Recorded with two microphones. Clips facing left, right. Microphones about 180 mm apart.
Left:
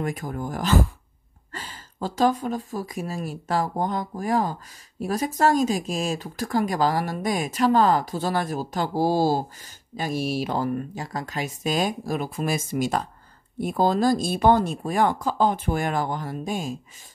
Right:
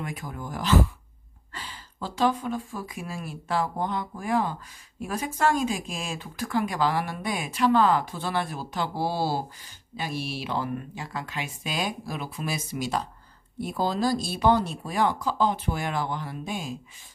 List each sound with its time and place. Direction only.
0.0 s speech: 45° left (ahead or behind)